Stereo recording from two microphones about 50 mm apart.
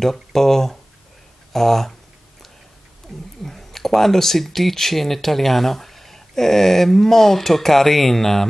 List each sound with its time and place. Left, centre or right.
0.0 s speech: centre
3.1 s speech: centre